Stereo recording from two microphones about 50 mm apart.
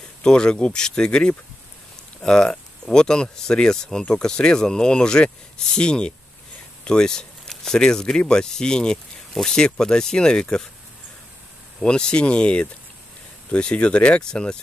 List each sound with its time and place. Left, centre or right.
0.2 s speech: centre
11.8 s speech: centre